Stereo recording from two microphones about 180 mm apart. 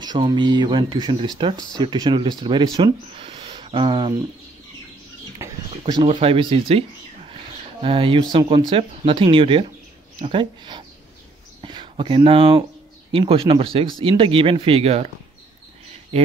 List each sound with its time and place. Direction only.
0.0 s speech: 25° right (ahead or behind)
5.4 s speech: 25° right (ahead or behind)
7.8 s speech: 30° right (ahead or behind)